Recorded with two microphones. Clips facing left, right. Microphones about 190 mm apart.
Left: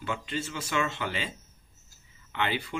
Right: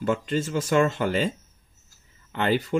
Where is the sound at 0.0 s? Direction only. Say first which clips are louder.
Right 9 dB; 45° right (ahead or behind).